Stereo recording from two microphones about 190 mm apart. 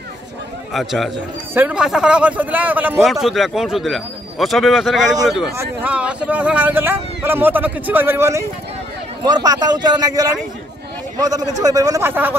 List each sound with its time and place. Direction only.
0.7 s a man's voice: centre (ahead or behind)